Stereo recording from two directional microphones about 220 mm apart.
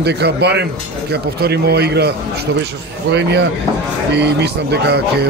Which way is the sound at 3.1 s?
50° right (ahead or behind).